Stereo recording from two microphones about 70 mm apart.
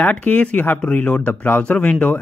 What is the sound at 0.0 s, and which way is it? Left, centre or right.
Speech, left.